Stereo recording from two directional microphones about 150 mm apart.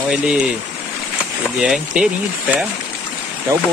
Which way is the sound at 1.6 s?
5° right (ahead or behind).